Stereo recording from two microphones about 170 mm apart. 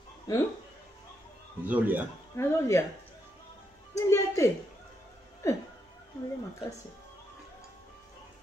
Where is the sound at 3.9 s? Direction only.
15° left (ahead or behind).